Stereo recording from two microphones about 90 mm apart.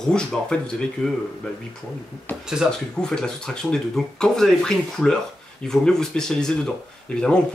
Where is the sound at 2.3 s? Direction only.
20° left (ahead or behind).